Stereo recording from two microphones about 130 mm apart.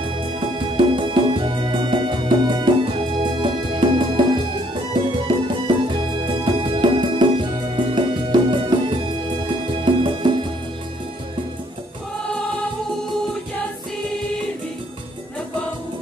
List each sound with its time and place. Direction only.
0.2 s music: 40° right (ahead or behind)